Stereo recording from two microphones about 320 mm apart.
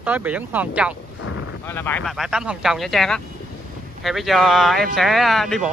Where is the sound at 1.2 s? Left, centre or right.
Left.